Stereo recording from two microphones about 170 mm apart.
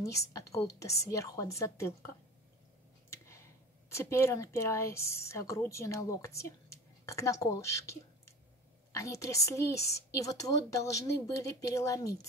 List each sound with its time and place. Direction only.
0.0 s a woman's voice: 20° left (ahead or behind)
3.1 s a sound: 15° left (ahead or behind)
3.9 s a woman's voice: 15° left (ahead or behind)